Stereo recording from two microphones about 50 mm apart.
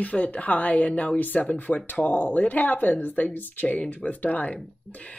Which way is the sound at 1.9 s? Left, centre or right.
Left.